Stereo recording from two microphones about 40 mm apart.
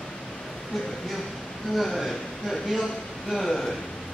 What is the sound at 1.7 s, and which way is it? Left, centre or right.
A man's voice, centre.